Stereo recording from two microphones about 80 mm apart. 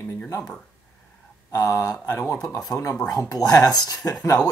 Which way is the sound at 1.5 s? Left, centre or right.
Left.